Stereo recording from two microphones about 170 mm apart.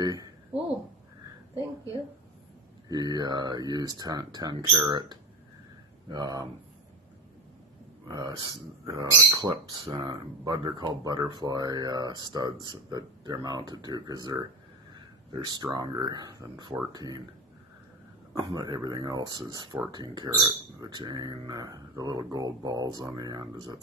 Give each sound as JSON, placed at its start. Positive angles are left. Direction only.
{"t": 0.0, "sound": "speech", "side_deg": -20}
{"t": 2.9, "sound": "speech", "side_deg": -25}
{"t": 8.1, "sound": "speech", "side_deg": -25}
{"t": 9.3, "sound": "speech", "side_deg": -30}
{"t": 18.3, "sound": "speech", "side_deg": -20}